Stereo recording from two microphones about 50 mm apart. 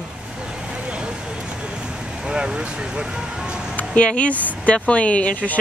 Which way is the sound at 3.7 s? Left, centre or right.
Left.